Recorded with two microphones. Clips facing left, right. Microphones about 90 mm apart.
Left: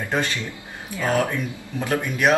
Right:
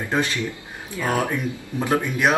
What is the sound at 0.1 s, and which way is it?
Speech, 20° right (ahead or behind).